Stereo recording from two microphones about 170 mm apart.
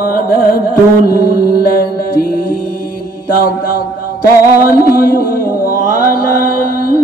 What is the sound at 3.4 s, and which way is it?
Mantra, 60° left (ahead or behind).